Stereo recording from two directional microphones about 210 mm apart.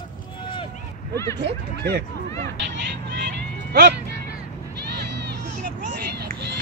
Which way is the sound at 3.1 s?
50° right (ahead or behind).